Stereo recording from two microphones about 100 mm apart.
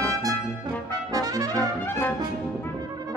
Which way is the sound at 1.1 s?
40° right (ahead or behind).